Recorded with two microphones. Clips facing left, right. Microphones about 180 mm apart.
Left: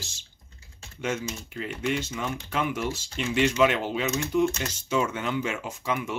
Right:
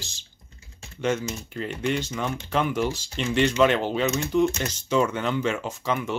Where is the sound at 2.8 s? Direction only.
35° right (ahead or behind).